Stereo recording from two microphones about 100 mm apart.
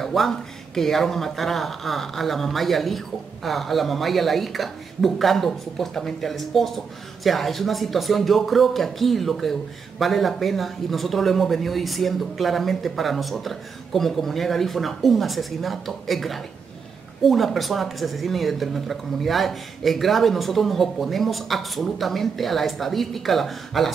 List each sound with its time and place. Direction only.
0.0 s speech: centre (ahead or behind)